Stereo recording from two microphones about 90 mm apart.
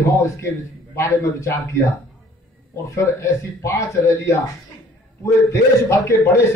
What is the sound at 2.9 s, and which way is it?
A man's voice, 35° left (ahead or behind).